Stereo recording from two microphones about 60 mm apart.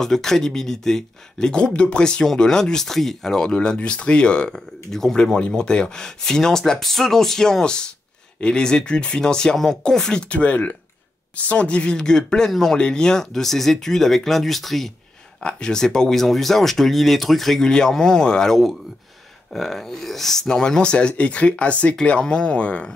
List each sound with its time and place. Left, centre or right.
0.0 s speech: centre